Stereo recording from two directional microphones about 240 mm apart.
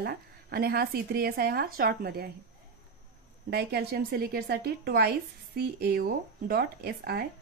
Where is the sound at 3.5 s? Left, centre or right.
Right.